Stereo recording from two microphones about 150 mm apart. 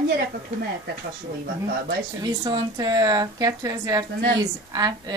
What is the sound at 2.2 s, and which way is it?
Speech, 30° right (ahead or behind).